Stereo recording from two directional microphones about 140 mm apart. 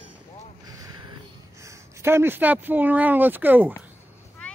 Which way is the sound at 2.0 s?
15° right (ahead or behind).